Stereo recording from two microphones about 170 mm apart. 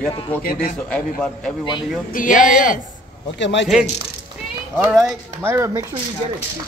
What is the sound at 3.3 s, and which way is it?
Speech, 90° left.